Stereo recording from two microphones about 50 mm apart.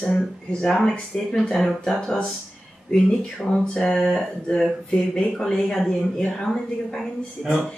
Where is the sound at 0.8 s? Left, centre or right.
Centre.